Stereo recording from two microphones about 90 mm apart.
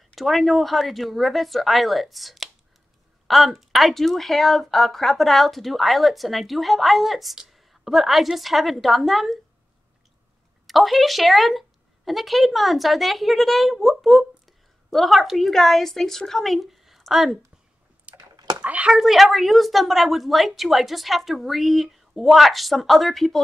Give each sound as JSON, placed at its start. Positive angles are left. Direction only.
{"t": 0.1, "sound": "speech", "side_deg": 0}
{"t": 10.7, "sound": "speech", "side_deg": 0}
{"t": 18.1, "sound": "computer keyboard", "side_deg": -50}
{"t": 18.6, "sound": "a child's voice", "side_deg": -15}
{"t": 18.9, "sound": "speech", "side_deg": -5}